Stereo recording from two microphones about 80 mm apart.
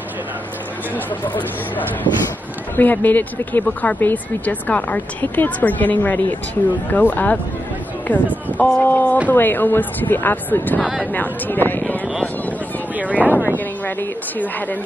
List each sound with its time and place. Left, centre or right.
2.7 s speech: left
10.8 s speech: centre
11.1 s speech: left
12.9 s speech: centre
13.8 s speech: left